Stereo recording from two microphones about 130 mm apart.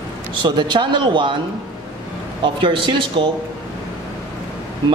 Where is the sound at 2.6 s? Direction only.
40° right (ahead or behind).